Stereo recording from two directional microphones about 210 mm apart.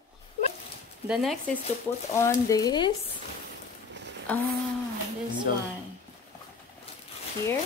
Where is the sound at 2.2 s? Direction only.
15° left (ahead or behind).